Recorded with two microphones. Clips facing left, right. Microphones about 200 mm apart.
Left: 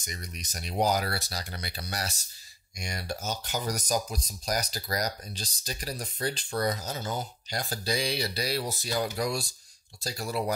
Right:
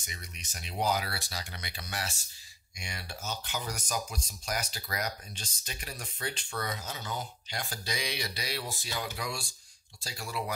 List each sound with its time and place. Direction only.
0.0 s speech: 40° left (ahead or behind)